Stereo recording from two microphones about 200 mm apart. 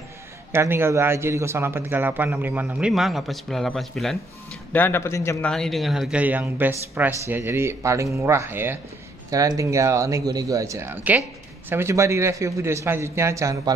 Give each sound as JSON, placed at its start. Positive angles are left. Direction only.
{"t": 0.5, "sound": "a man's voice", "side_deg": -10}